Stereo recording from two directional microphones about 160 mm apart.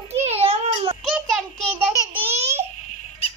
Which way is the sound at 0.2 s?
40° right (ahead or behind).